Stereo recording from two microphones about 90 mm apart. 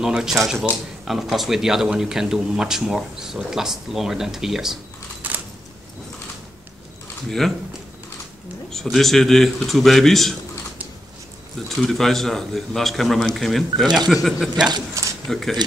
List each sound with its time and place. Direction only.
0.0 s speech: 5° right (ahead or behind)
5.2 s a sound: 20° right (ahead or behind)
7.2 s speech: 5° left (ahead or behind)
8.9 s speech: 5° left (ahead or behind)
11.7 s speech: 5° left (ahead or behind)